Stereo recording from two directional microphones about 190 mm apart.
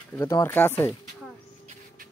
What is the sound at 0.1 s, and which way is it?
Speech, 15° left (ahead or behind).